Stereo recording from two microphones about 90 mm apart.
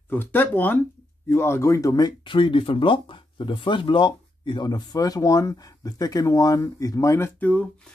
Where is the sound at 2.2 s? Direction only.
70° left (ahead or behind); by 7.3 s 35° left (ahead or behind).